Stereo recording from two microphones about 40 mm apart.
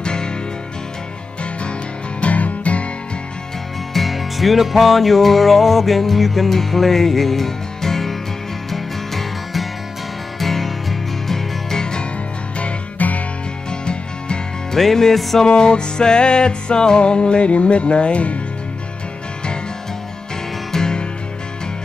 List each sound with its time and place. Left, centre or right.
0.0 s music: centre
2.1 s music: left
3.9 s music: centre
11.8 s music: left
13.0 s music: left
13.7 s music: left
14.8 s music: centre
15.4 s music: left
20.7 s music: centre